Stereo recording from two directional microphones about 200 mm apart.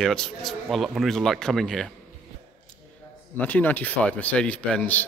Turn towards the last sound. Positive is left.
turn(degrees=5)  # may be behind; listen again after turning